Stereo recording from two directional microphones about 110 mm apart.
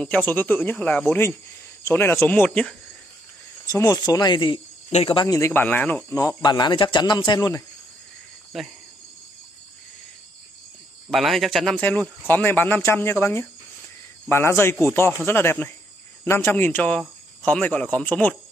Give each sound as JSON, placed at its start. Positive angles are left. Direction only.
{"t": 0.0, "sound": "speech", "side_deg": 15}
{"t": 3.6, "sound": "speech", "side_deg": 30}
{"t": 4.8, "sound": "speech", "side_deg": 65}
{"t": 5.1, "sound": "speech", "side_deg": 35}
{"t": 5.5, "sound": "speech", "side_deg": 15}
{"t": 6.4, "sound": "a man's voice", "side_deg": 40}
{"t": 7.3, "sound": "speech", "side_deg": 30}
{"t": 11.1, "sound": "speech", "side_deg": 0}